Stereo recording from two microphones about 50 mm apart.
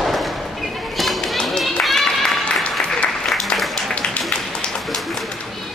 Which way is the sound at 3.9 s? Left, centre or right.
Centre.